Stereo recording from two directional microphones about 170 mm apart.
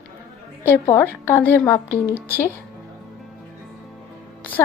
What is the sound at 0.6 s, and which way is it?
A woman's voice, 15° left (ahead or behind).